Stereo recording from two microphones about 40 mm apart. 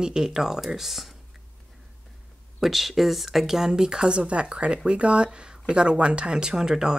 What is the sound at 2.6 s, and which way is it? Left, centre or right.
Speech, centre.